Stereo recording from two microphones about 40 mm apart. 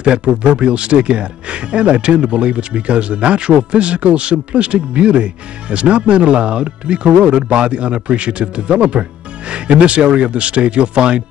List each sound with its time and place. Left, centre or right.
0.0 s speech: right